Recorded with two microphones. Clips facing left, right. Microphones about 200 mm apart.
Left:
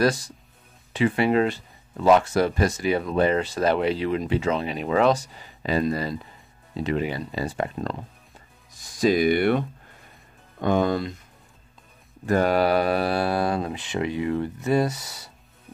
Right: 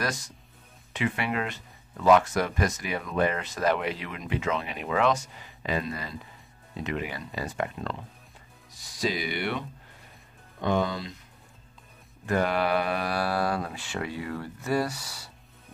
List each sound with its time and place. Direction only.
0.0 s speech: 30° left (ahead or behind)
8.7 s speech: 50° left (ahead or behind)
12.3 s speech: 40° left (ahead or behind); by 15.2 s 20° left (ahead or behind)